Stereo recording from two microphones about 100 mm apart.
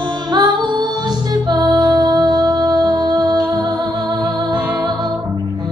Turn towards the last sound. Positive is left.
turn(degrees=-45)  # may be behind; listen again after turning